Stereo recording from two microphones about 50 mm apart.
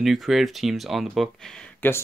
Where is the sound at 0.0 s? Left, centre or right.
Centre.